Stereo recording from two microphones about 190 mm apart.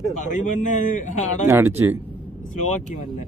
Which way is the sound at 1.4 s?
10° right (ahead or behind).